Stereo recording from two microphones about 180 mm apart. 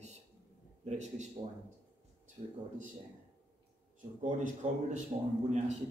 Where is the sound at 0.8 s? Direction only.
40° right (ahead or behind).